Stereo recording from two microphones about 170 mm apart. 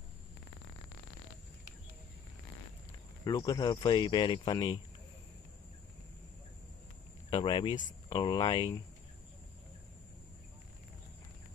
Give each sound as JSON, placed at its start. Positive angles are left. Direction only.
{"t": 3.3, "sound": "speech", "side_deg": 20}
{"t": 7.2, "sound": "speech", "side_deg": 25}